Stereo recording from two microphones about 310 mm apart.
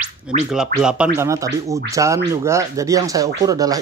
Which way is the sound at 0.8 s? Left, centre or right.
Centre.